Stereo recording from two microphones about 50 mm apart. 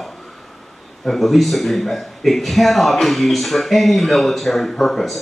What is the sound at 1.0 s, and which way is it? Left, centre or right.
A man's voice, centre.